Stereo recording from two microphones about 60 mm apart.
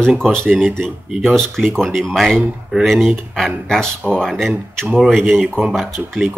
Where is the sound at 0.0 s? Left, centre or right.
Centre.